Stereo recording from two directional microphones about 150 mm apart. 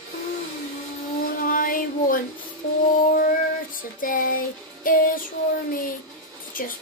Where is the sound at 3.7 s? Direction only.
70° left (ahead or behind).